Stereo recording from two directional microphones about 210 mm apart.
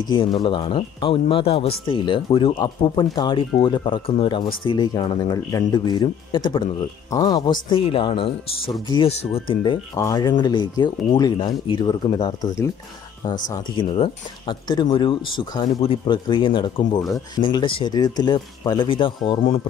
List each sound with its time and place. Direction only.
0.1 s speech: 20° left (ahead or behind)